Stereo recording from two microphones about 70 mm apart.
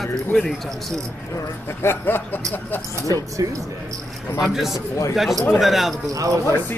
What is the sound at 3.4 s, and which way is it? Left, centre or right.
Speech, right.